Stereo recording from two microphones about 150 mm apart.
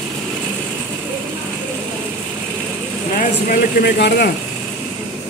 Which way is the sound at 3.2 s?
80° left.